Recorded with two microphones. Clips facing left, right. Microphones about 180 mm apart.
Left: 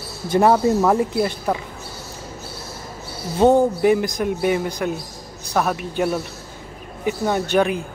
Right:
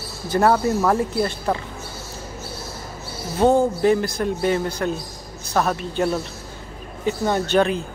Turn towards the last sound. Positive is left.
turn(degrees=10)  # may be behind; listen again after turning